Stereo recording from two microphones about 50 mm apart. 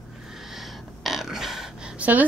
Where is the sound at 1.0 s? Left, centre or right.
Centre.